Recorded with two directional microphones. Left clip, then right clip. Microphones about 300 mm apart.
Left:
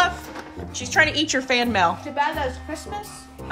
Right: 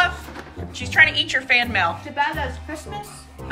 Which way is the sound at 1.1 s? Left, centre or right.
Left.